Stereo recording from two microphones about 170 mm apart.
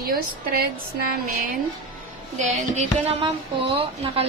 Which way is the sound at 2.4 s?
40° right (ahead or behind).